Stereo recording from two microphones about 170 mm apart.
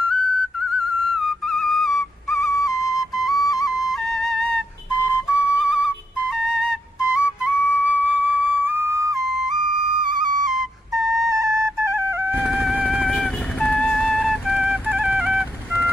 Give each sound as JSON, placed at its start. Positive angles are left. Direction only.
{"t": 0.7, "sound": "whistle", "side_deg": 0}
{"t": 2.6, "sound": "flute", "side_deg": 0}
{"t": 10.5, "sound": "flute", "side_deg": 0}
{"t": 11.3, "sound": "music", "side_deg": -20}
{"t": 12.4, "sound": "music", "side_deg": 0}